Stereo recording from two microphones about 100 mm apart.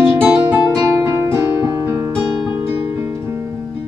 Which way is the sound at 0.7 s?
30° right (ahead or behind).